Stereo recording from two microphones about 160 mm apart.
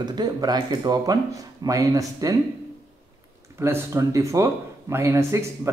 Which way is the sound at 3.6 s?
20° right (ahead or behind).